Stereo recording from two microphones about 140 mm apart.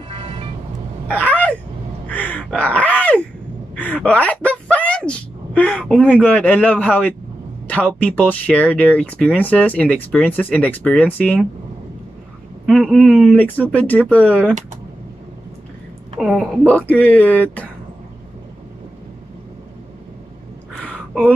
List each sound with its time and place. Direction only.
0.1 s vehicle: 40° right (ahead or behind)
1.0 s a sound: 10° left (ahead or behind)
2.0 s crow: 10° left (ahead or behind)
3.7 s a sound: 10° left (ahead or behind)
5.6 s speech: 10° left (ahead or behind)
12.6 s speech: 5° right (ahead or behind)
13.3 s speech: 10° left (ahead or behind)
16.2 s speech: 5° right (ahead or behind)
16.6 s speech: 10° left (ahead or behind)